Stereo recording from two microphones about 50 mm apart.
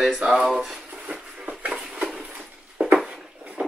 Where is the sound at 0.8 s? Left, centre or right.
Centre.